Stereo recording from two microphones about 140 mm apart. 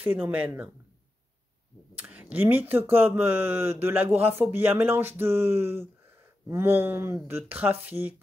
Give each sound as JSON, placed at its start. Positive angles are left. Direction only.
{"t": 0.0, "sound": "speech", "side_deg": -15}
{"t": 2.0, "sound": "a sound", "side_deg": -10}
{"t": 2.9, "sound": "speech", "side_deg": -15}